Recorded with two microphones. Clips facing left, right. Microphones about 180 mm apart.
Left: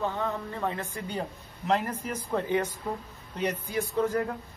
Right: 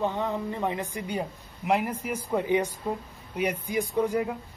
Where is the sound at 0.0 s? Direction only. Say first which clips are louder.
Right 3 dB; 15° right (ahead or behind).